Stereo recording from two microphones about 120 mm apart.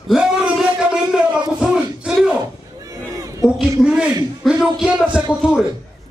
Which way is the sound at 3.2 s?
25° right (ahead or behind).